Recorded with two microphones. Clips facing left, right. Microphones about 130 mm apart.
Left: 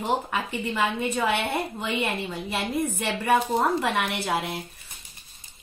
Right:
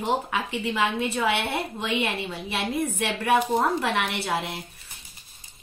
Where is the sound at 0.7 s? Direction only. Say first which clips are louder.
Right 1 dB; centre (ahead or behind).